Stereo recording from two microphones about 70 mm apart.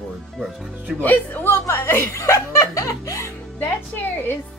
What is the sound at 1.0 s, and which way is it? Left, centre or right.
Speech, left.